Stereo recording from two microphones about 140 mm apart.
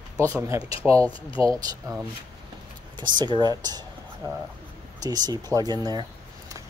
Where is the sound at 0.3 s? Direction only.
20° right (ahead or behind).